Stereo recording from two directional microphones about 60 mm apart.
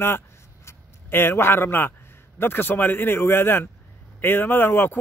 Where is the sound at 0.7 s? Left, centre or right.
Left.